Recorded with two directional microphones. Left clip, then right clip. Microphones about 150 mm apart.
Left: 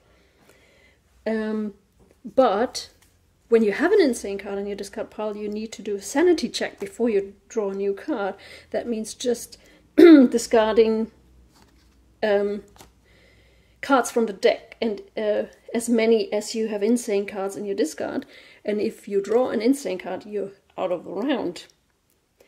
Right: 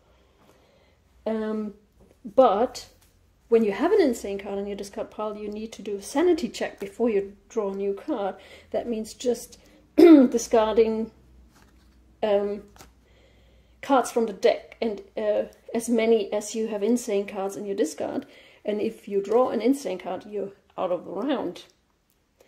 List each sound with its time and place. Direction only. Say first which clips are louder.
2.3 s a woman's voice: even; 20° left (ahead or behind)
10.1 s a woman's voice: left 2 dB; 30° left (ahead or behind)
12.2 s a woman's voice: left 2 dB; 20° left (ahead or behind)
21.4 s speech: left 2 dB; 40° left (ahead or behind)